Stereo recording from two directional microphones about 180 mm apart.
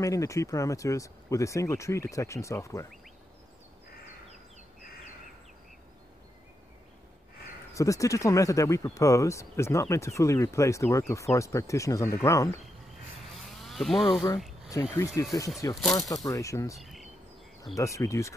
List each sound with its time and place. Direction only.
0.0 s speech: 15° left (ahead or behind)
7.7 s speech: 15° left (ahead or behind)
13.3 s a sound: centre (ahead or behind)
14.7 s speech: 15° left (ahead or behind)
15.7 s speech: centre (ahead or behind)
16.3 s speech: 15° left (ahead or behind)
16.7 s insect: centre (ahead or behind)
17.7 s speech: 15° left (ahead or behind)